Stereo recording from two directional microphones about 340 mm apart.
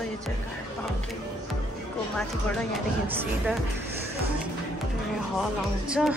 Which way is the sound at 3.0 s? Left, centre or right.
Centre.